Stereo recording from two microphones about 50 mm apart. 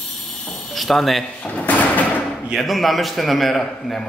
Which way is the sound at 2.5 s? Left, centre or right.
Centre.